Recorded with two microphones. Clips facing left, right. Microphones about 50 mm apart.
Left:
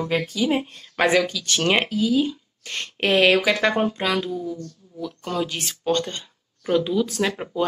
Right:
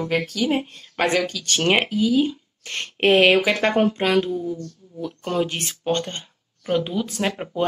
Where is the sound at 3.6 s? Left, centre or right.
Right.